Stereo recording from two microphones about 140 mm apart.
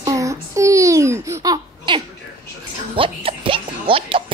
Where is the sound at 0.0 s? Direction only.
25° right (ahead or behind).